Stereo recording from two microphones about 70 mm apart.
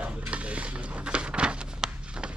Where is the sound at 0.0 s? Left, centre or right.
Centre.